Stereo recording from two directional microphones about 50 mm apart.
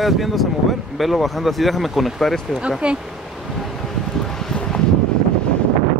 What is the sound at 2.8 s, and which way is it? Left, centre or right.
Speech, right.